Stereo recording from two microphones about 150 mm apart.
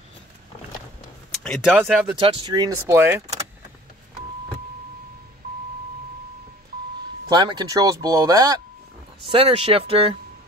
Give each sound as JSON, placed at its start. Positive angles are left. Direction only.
{"t": 1.4, "sound": "speech", "side_deg": 0}
{"t": 2.1, "sound": "speech", "side_deg": -35}
{"t": 7.2, "sound": "speech", "side_deg": -30}
{"t": 9.2, "sound": "speech", "side_deg": -35}